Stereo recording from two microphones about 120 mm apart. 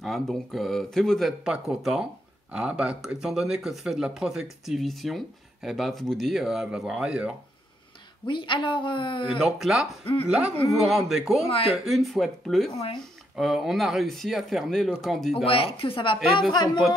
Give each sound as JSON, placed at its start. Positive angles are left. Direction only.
{"t": 0.0, "sound": "speech", "side_deg": 0}
{"t": 8.3, "sound": "a woman's voice", "side_deg": 45}
{"t": 9.4, "sound": "speech", "side_deg": -5}
{"t": 11.4, "sound": "speech", "side_deg": 55}
{"t": 11.7, "sound": "speech", "side_deg": 0}
{"t": 15.3, "sound": "a woman's voice", "side_deg": 50}